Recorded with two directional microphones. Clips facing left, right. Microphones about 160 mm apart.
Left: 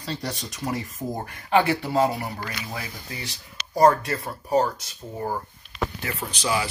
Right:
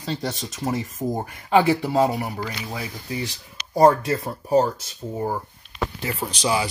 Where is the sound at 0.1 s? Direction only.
20° right (ahead or behind).